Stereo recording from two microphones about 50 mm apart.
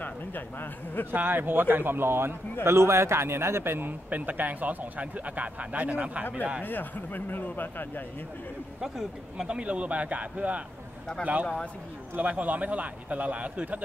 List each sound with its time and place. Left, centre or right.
0.0 s a man's voice: left
1.1 s a man's voice: right
4.1 s speech: right
6.6 s speech: left
8.8 s speech: centre
9.6 s a man's voice: right
12.2 s a man's voice: right